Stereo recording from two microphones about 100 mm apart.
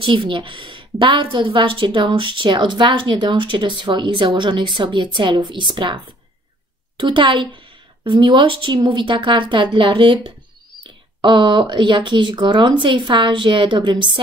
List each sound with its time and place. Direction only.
0.0 s a woman's voice: 55° right (ahead or behind)
7.0 s a woman's voice: 55° right (ahead or behind)